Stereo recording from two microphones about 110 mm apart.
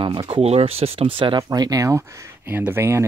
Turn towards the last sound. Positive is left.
turn(degrees=-25)  # may be behind; listen again after turning